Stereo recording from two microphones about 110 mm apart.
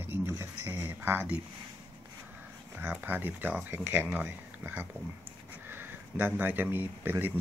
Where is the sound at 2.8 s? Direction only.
15° right (ahead or behind).